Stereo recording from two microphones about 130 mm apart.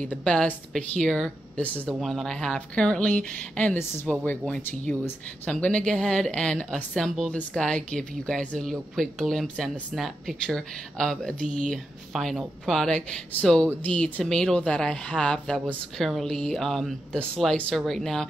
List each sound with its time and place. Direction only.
0.0 s a woman's voice: 10° left (ahead or behind)
11.4 s speech: 75° right (ahead or behind)
11.7 s speech: centre (ahead or behind)